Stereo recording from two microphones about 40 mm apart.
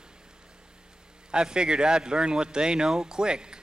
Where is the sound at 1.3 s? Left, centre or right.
Right.